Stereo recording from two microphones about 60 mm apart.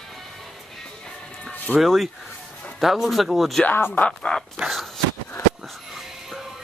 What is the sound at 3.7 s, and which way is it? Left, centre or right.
Speech, left.